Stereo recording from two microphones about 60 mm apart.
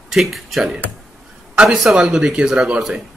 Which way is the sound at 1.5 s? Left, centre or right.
Centre.